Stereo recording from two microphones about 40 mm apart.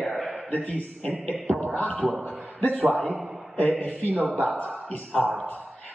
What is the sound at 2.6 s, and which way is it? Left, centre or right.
Speech, left.